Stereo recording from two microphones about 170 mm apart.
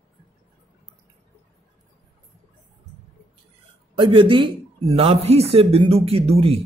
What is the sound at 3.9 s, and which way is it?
Speech, 30° right (ahead or behind).